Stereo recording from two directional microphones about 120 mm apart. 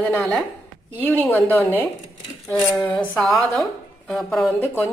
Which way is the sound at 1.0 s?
15° left (ahead or behind).